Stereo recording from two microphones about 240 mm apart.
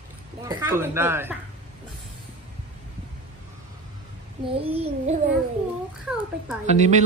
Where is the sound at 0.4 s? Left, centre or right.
Centre.